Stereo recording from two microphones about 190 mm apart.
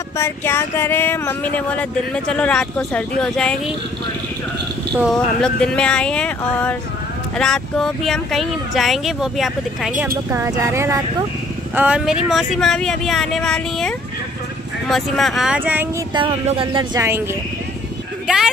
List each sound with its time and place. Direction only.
0.2 s speech: 15° left (ahead or behind)
5.1 s speech: 5° left (ahead or behind)
16.2 s speech: 25° right (ahead or behind)
18.2 s speech: centre (ahead or behind)